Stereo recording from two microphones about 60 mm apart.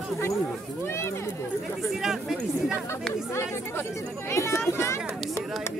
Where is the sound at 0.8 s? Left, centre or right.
Left.